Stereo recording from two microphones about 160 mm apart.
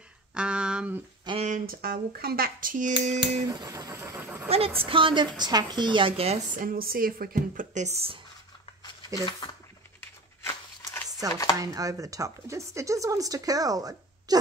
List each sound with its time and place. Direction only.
0.3 s speech: 5° right (ahead or behind)
1.4 s a woman's voice: 60° right (ahead or behind)
2.9 s a sound: 40° right (ahead or behind)
3.4 s speech: 20° right (ahead or behind)
4.5 s a woman's voice: 35° right (ahead or behind)
6.5 s a woman's voice: 65° right (ahead or behind); by 8.2 s 40° right (ahead or behind)
8.8 s a sound: 25° left (ahead or behind)
11.5 s speech: 20° right (ahead or behind)